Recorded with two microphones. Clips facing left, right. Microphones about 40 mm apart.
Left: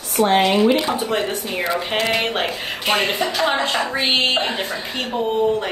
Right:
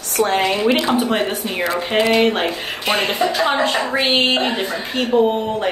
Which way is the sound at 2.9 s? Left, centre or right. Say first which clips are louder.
Right 1 dB; right.